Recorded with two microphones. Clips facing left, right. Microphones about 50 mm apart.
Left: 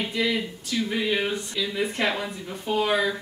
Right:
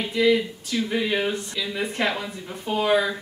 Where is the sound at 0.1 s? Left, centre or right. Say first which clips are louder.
Right 6 dB; centre.